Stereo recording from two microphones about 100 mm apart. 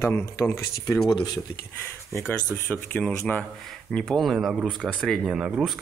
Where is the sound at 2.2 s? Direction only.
20° left (ahead or behind).